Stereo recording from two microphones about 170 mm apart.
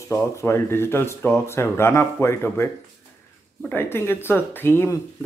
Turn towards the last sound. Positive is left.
turn(degrees=15)  # may be behind; listen again after turning